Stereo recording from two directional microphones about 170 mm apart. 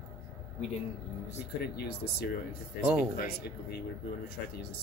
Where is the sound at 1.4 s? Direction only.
70° left (ahead or behind).